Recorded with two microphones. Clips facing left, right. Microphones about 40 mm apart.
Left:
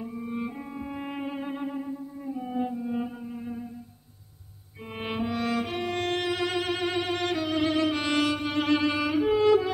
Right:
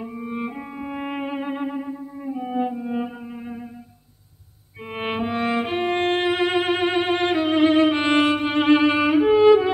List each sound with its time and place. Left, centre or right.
0.0 s music: right
4.9 s music: right